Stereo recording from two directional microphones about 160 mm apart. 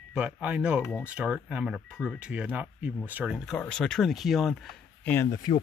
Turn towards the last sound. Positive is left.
turn(degrees=25)  # may be behind; listen again after turning